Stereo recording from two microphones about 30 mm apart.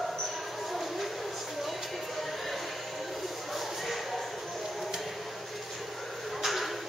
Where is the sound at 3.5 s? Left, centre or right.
Centre.